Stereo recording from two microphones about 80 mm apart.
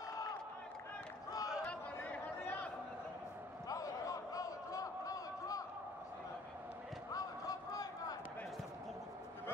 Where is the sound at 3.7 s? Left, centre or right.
Left.